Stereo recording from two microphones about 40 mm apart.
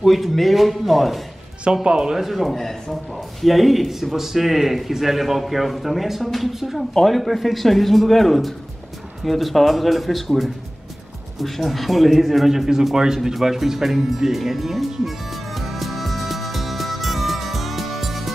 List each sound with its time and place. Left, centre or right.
0.0 s speech: centre
1.6 s speech: right
2.1 s speech: centre
11.3 s a sound: centre